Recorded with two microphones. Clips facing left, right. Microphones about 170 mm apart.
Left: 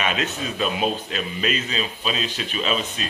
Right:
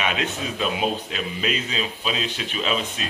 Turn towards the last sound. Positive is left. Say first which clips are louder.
# left 1 dB
turn(degrees=-5)  # may be behind; listen again after turning